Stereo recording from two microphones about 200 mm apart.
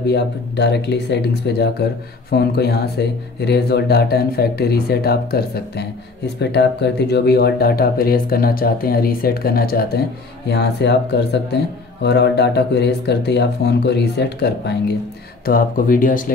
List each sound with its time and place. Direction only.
0.0 s speech: 55° left (ahead or behind)
15.4 s speech: 45° left (ahead or behind)